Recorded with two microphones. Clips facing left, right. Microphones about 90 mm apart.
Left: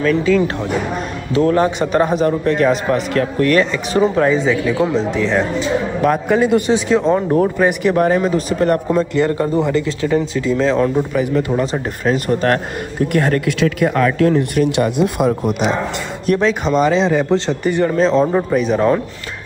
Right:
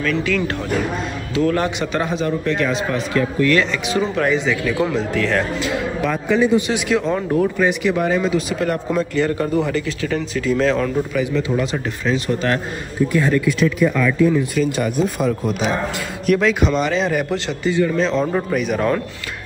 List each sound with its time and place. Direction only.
0.0 s a man's voice: 30° left (ahead or behind)
1.8 s a man's voice: 40° left (ahead or behind); by 5.8 s 25° left (ahead or behind)
6.0 s a man's voice: 40° left (ahead or behind)
6.7 s a man's voice: 30° left (ahead or behind)
11.2 s a man's voice: 40° left (ahead or behind)
13.1 s speech: 65° left (ahead or behind); by 14.0 s 80° left
14.5 s speech: 65° left (ahead or behind)
16.3 s a man's voice: 35° left (ahead or behind)